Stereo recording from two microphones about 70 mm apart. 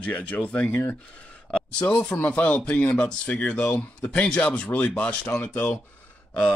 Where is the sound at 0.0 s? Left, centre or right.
Centre.